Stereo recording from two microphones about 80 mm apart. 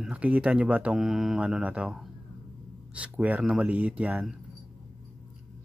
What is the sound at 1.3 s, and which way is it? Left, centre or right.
Speech, centre.